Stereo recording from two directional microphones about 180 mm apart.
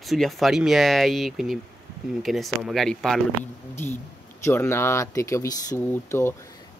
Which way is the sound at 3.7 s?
15° left (ahead or behind).